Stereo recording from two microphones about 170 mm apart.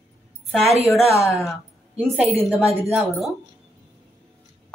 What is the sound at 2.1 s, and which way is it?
A woman's voice, centre (ahead or behind).